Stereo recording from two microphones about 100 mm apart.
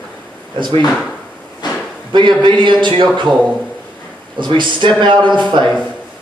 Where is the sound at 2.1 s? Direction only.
50° right (ahead or behind).